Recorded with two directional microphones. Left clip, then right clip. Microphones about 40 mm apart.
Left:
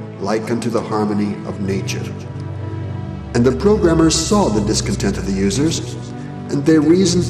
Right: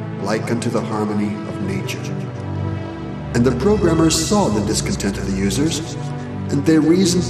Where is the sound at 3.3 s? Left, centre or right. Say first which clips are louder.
Left 2 dB; right.